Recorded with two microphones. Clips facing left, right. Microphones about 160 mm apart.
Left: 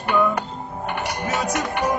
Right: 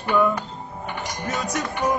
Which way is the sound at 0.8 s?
65° left (ahead or behind).